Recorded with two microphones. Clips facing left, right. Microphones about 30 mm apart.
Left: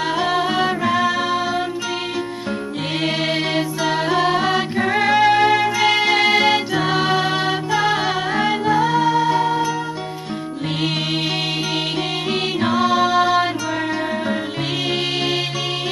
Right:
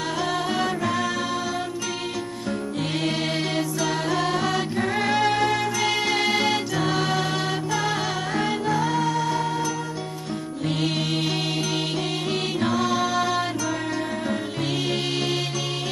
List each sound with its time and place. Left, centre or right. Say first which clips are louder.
0.2 s music: left 5 dB; left
3.5 s music: left 5 dB; left
12.3 s music: left 5 dB; left